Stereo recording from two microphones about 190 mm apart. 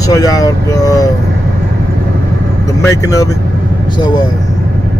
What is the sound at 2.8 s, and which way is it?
Speech, 15° left (ahead or behind).